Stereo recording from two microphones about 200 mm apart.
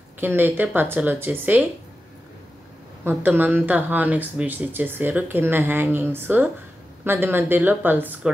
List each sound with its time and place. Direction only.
0.2 s speech: 10° right (ahead or behind)
3.1 s speech: 10° right (ahead or behind)